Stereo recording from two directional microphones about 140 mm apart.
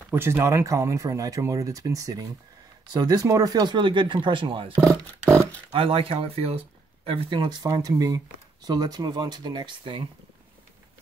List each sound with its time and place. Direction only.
0.1 s speech: 15° right (ahead or behind); by 4.7 s 35° right (ahead or behind)
4.7 s speech: 20° right (ahead or behind)
5.7 s speech: 40° right (ahead or behind)